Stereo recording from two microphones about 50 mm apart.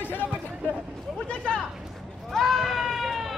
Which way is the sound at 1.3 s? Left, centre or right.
Centre.